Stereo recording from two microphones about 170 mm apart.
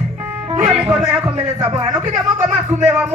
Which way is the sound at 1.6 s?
25° right (ahead or behind).